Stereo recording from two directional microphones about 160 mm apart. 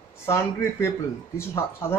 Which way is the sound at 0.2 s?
15° left (ahead or behind).